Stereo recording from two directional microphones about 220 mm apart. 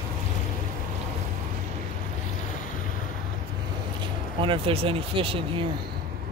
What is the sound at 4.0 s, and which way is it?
Speech, 25° right (ahead or behind).